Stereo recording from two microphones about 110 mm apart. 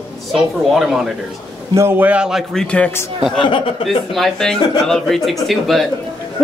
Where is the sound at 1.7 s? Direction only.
20° right (ahead or behind); by 2.6 s centre (ahead or behind).